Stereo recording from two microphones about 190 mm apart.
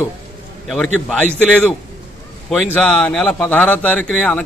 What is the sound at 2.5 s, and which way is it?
A man's voice, 5° left (ahead or behind).